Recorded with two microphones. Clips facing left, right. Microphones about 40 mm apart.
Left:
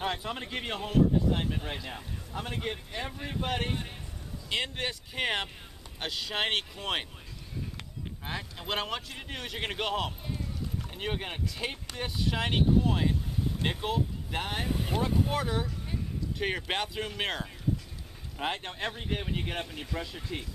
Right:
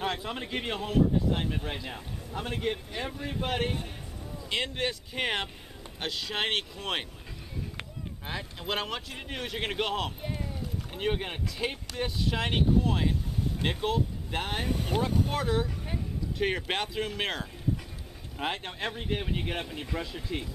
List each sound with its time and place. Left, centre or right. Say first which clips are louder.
0.0 s speech: right 1 dB; centre
8.3 s speech: right 1 dB; centre
10.2 s a sound: right 2 dB; right
10.9 s speech: right 6 dB; centre